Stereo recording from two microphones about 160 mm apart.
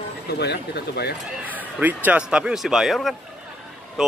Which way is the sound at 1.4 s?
10° right (ahead or behind).